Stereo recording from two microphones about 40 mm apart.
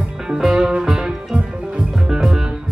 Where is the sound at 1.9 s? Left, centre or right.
Centre.